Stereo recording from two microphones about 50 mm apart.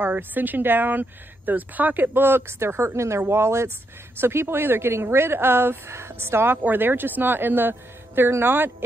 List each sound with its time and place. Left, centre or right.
0.1 s speech: right
3.3 s speech: right
6.6 s speech: right